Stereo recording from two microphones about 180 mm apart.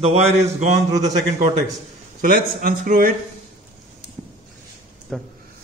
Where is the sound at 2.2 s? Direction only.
50° right (ahead or behind).